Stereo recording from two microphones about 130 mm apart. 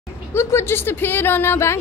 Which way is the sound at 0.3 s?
20° left (ahead or behind).